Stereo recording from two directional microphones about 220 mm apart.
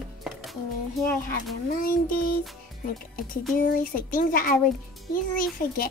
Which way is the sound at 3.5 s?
40° left (ahead or behind).